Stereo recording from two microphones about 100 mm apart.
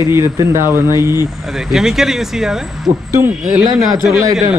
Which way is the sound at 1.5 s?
5° right (ahead or behind).